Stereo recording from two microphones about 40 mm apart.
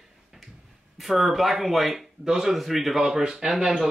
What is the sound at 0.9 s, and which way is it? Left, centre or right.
Speech, centre.